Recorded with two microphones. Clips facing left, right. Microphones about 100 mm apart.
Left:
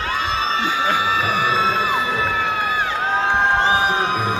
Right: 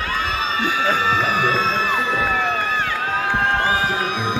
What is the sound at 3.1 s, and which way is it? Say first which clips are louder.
Crowd: left 3 dB; 20° left (ahead or behind).